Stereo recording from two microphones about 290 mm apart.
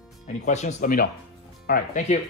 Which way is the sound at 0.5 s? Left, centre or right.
Left.